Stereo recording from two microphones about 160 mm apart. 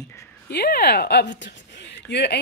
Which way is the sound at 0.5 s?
85° left.